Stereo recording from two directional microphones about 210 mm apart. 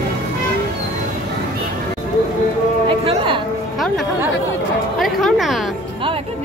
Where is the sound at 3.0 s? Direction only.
25° right (ahead or behind).